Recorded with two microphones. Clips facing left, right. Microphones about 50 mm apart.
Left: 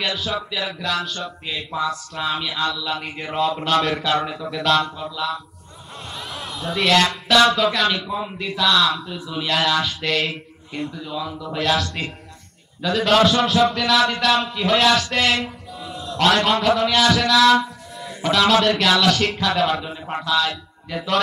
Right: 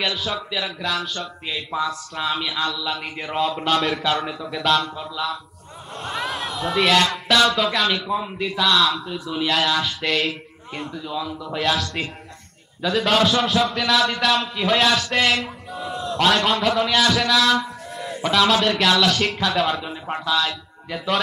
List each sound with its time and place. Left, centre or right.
0.0 s speech: centre
6.0 s crowd: right
6.7 s speech: centre
11.5 s speech: centre
15.8 s a sound: centre
16.4 s speech: centre